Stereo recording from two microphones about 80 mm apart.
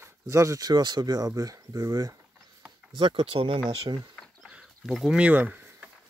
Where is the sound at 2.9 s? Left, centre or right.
Right.